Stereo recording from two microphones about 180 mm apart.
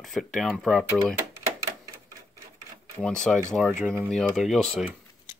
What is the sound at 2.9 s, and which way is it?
Speech, 5° left (ahead or behind).